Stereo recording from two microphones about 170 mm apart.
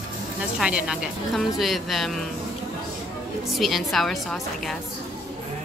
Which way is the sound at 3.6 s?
Centre (ahead or behind).